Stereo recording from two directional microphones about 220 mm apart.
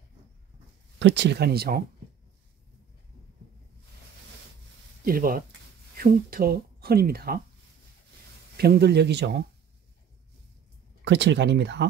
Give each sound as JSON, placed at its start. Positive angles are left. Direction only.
{"t": 0.9, "sound": "speech", "side_deg": -55}
{"t": 5.0, "sound": "speech", "side_deg": -40}
{"t": 8.5, "sound": "speech", "side_deg": -45}
{"t": 11.1, "sound": "speech", "side_deg": -50}